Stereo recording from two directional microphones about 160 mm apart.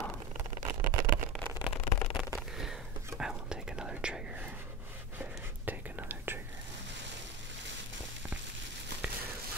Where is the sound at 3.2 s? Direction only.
5° right (ahead or behind).